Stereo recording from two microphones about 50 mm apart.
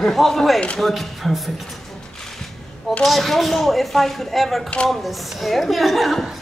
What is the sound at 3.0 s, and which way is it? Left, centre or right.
A woman's voice, centre.